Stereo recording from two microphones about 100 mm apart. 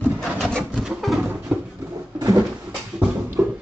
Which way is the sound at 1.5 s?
15° right (ahead or behind).